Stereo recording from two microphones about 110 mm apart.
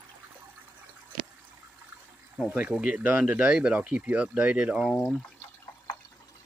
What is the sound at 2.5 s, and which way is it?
Speech, 10° right (ahead or behind).